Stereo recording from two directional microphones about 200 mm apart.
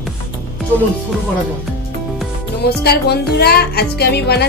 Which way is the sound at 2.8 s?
55° left (ahead or behind).